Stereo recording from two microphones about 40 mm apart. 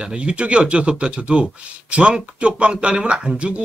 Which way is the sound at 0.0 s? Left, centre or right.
Right.